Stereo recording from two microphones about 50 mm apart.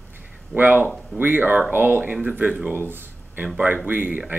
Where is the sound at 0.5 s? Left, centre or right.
Right.